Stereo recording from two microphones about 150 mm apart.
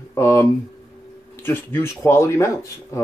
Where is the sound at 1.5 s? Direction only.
15° left (ahead or behind).